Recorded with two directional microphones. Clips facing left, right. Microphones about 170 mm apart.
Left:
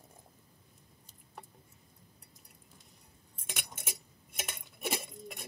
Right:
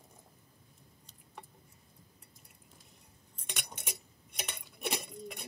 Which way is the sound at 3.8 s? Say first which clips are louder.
Even; 5° left (ahead or behind).